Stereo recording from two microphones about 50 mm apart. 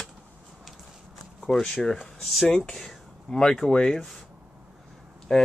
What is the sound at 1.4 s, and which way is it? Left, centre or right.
Speech, centre.